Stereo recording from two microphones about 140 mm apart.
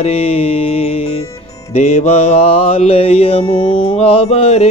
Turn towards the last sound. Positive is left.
turn(degrees=50)  # may be behind; listen again after turning